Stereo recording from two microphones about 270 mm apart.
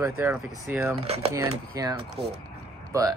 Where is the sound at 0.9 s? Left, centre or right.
Right.